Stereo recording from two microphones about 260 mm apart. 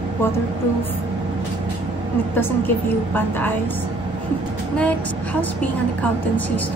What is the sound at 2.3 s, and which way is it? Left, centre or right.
A woman's voice, centre.